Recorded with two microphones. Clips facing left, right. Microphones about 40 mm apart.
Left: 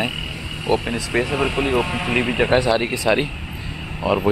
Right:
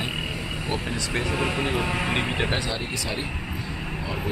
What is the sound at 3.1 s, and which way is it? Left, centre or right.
Speech, left.